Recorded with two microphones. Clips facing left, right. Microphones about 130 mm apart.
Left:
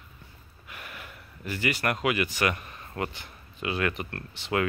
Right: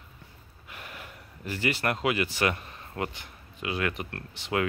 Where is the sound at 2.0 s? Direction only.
30° right (ahead or behind).